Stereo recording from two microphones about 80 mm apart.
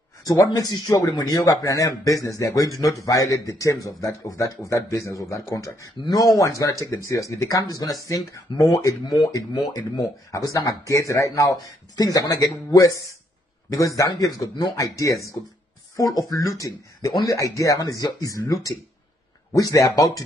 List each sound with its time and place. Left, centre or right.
0.3 s speech: left